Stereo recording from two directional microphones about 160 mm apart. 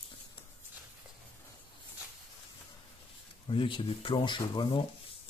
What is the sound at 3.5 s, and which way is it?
Speech, 30° left (ahead or behind).